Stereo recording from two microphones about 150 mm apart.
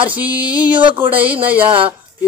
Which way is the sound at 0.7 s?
30° right (ahead or behind).